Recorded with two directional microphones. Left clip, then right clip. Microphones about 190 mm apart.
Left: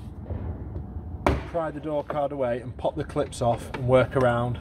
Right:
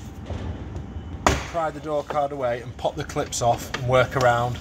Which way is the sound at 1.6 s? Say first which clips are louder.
Right 2 dB; 25° left (ahead or behind).